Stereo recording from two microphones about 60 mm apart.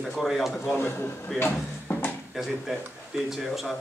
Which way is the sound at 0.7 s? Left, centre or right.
Left.